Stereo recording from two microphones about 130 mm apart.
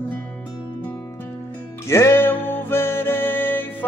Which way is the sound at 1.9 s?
20° left (ahead or behind).